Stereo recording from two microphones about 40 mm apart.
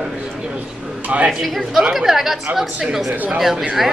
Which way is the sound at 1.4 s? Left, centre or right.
Centre.